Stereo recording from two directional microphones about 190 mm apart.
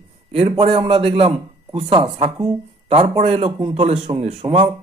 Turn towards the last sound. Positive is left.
turn(degrees=-25)  # may be behind; listen again after turning